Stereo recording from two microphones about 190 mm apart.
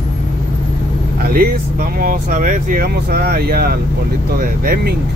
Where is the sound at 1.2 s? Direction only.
50° right (ahead or behind).